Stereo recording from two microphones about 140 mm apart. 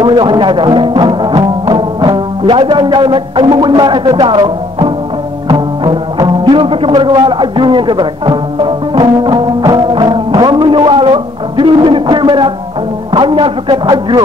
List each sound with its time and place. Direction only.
0.0 s speech: 35° right (ahead or behind)
5.5 s music: 30° right (ahead or behind)
13.1 s a man's voice: 35° right (ahead or behind)